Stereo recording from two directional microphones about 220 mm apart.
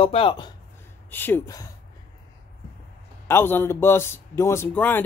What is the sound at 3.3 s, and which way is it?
Speech, 10° left (ahead or behind).